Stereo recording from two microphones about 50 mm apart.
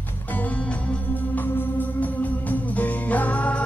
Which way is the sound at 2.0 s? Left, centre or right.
Left.